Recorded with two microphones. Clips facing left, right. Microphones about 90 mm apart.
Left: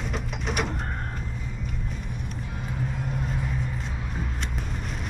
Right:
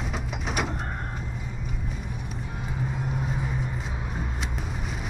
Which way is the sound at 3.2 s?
5° right (ahead or behind).